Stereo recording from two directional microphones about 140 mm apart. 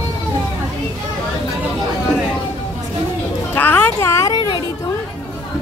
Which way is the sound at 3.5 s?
15° left (ahead or behind).